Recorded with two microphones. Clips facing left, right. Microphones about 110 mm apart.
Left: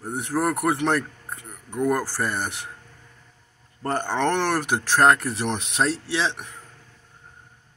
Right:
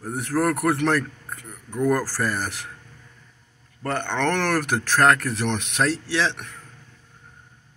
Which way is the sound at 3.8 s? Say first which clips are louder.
Left 1 dB; 35° left (ahead or behind).